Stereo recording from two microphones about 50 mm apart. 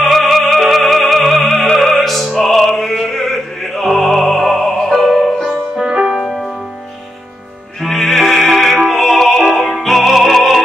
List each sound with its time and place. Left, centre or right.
0.0 s music: centre
5.9 s music: centre
6.2 s music: centre
7.8 s music: centre